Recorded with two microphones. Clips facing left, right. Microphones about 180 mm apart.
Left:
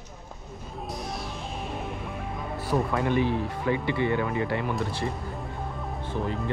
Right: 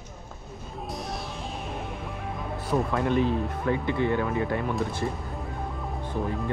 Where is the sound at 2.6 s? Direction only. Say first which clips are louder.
Even; centre (ahead or behind).